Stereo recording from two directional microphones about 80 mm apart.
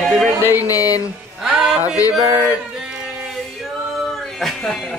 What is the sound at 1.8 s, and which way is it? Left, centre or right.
Speech, left.